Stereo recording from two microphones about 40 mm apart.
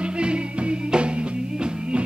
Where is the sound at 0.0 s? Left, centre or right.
Right.